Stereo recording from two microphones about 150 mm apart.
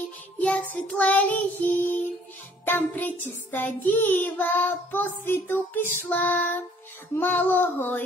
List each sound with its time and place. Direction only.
0.4 s child singing: 10° left (ahead or behind)